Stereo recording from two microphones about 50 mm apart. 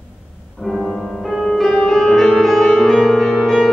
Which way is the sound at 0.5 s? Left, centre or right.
Centre.